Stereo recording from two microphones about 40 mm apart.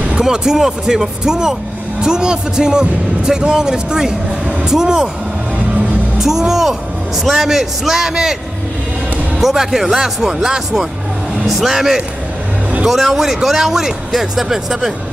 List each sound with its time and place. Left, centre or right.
0.2 s speech: centre
6.1 s speech: centre
9.4 s speech: centre